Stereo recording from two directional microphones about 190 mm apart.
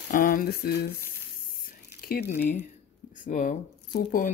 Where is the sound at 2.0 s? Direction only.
50° left (ahead or behind).